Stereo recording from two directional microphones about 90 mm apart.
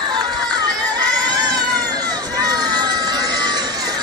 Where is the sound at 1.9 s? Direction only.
40° right (ahead or behind).